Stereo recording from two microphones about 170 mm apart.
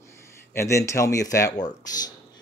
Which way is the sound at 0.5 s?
15° left (ahead or behind).